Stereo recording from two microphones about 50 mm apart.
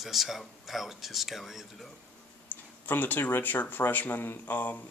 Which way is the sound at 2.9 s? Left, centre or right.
Left.